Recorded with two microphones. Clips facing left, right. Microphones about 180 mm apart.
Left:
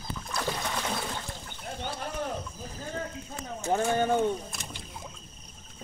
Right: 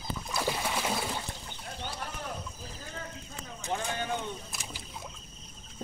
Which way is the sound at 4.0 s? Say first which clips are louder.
Left 9 dB; 45° left (ahead or behind).